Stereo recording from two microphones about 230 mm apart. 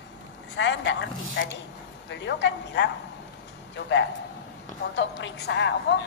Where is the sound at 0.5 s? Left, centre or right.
Left.